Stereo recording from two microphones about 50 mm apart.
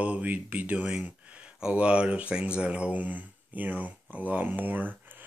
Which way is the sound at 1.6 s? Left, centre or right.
Right.